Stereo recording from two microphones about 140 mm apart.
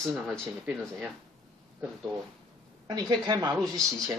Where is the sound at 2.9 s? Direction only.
30° right (ahead or behind).